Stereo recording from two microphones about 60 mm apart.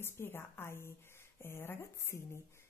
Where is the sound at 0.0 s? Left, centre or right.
Left.